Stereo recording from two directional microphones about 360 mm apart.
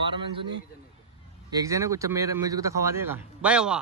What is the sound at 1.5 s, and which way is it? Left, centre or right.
Speech, centre.